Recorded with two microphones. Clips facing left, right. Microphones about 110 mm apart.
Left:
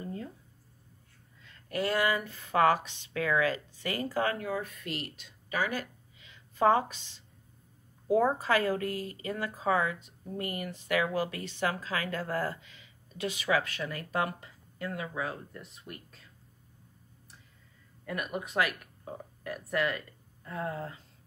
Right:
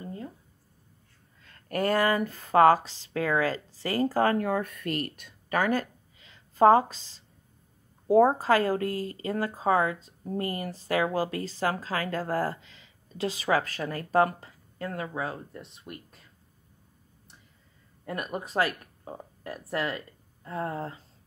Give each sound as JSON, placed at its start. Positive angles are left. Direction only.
{"t": 1.4, "sound": "speech", "side_deg": -45}
{"t": 18.0, "sound": "speech", "side_deg": -35}